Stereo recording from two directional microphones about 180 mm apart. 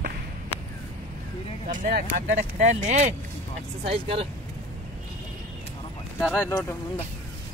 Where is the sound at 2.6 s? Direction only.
40° right (ahead or behind).